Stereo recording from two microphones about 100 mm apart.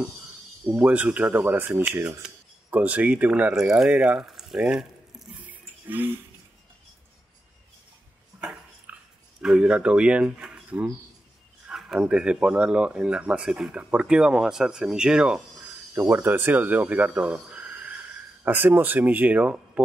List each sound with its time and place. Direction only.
0.7 s speech: 15° right (ahead or behind)
5.4 s toilet flush: 15° right (ahead or behind)
8.9 s a sound: 15° right (ahead or behind)
9.4 s speech: 10° right (ahead or behind)
15.9 s speech: 20° right (ahead or behind)